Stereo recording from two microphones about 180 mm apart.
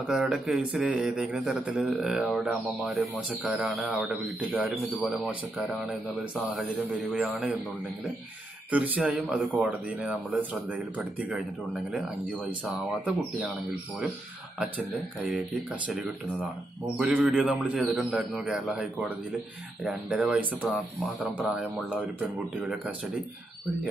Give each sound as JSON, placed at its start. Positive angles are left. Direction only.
{"t": 0.0, "sound": "speech", "side_deg": -5}
{"t": 8.6, "sound": "speech", "side_deg": -10}
{"t": 14.6, "sound": "speech", "side_deg": -10}